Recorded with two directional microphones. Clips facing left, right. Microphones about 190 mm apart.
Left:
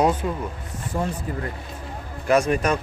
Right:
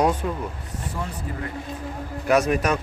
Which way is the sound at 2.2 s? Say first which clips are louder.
Even; 5° right (ahead or behind).